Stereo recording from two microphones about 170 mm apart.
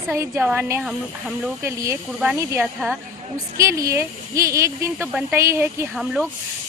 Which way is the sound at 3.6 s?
15° right (ahead or behind).